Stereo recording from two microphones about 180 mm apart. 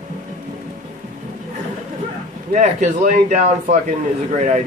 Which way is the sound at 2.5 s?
40° right (ahead or behind).